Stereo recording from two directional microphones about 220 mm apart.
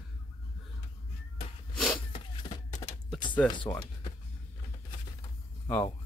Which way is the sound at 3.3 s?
20° left (ahead or behind).